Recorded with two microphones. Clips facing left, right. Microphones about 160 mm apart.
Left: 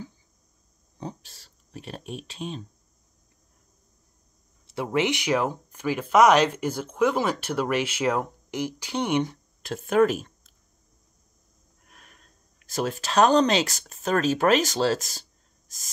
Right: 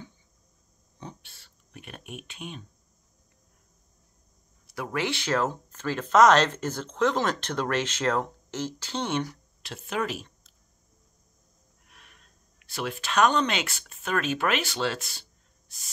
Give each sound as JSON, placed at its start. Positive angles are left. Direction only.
{"t": 0.9, "sound": "a sound", "side_deg": 35}
{"t": 4.6, "sound": "speech", "side_deg": 25}
{"t": 9.6, "sound": "speech", "side_deg": 50}
{"t": 11.9, "sound": "speech", "side_deg": 40}